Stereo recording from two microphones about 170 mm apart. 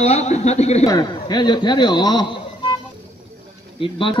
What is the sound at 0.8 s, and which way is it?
Speech, 25° left (ahead or behind).